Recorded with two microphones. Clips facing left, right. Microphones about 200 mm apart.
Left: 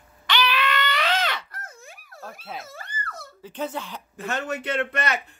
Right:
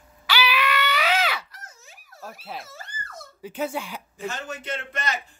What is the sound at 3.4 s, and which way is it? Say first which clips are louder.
Speech: right 2 dB; 10° right (ahead or behind).